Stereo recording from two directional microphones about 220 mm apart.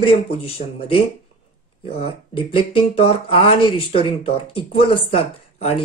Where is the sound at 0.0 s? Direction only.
25° left (ahead or behind).